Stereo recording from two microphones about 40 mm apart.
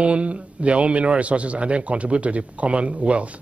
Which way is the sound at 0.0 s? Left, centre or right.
Right.